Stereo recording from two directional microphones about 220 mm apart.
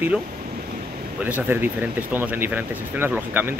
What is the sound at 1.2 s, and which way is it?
Speech, 10° right (ahead or behind).